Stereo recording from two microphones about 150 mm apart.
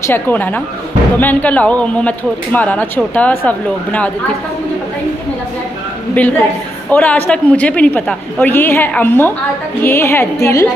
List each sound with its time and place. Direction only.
0.0 s speech: 15° left (ahead or behind)
6.2 s speech: 10° left (ahead or behind)